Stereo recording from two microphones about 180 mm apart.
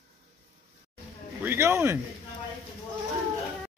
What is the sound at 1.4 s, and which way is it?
Speech, 15° right (ahead or behind).